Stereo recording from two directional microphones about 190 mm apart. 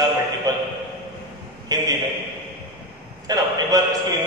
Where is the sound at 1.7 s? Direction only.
20° right (ahead or behind).